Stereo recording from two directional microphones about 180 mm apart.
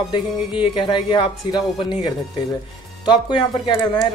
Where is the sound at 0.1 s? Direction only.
25° left (ahead or behind).